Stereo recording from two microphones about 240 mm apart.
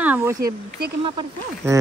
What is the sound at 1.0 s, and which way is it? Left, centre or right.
Speech, centre.